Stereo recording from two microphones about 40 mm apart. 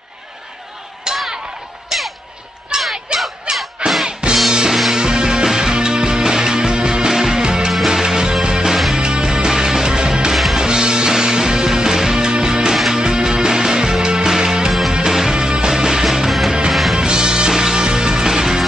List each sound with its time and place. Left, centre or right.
1.1 s a sound: centre
1.9 s music: centre
2.7 s a sound: centre
3.8 s music: right
10.3 s music: centre
10.6 s music: centre
14.7 s music: centre
17.0 s music: centre